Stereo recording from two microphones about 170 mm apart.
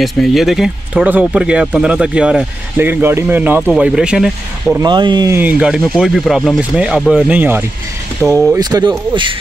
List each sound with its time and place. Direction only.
0.0 s speech: centre (ahead or behind)
4.7 s speech: 25° right (ahead or behind)
5.4 s speech: 10° right (ahead or behind)
7.2 s speech: 10° right (ahead or behind); by 9.3 s 30° right (ahead or behind)